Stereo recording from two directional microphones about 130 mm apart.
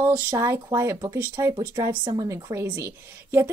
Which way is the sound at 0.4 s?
25° right (ahead or behind).